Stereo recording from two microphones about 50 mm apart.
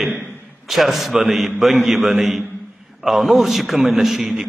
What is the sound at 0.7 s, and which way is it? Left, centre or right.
A man's voice, centre.